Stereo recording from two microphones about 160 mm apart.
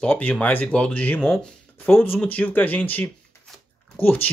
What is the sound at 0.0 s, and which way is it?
Speech, 10° left (ahead or behind).